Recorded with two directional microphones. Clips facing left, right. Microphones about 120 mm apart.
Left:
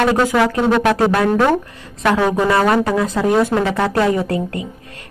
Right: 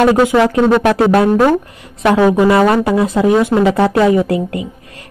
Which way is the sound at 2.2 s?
10° right (ahead or behind).